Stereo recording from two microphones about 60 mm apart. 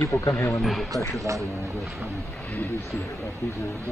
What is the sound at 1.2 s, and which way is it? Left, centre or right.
Speech, right.